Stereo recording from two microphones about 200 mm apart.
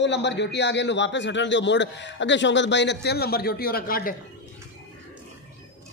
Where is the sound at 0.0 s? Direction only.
60° left (ahead or behind).